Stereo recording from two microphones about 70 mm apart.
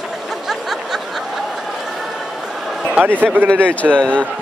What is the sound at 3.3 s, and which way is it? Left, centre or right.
Speech, right.